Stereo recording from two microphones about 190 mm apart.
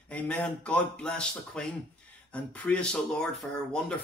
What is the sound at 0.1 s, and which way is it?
A man's voice, 5° left (ahead or behind).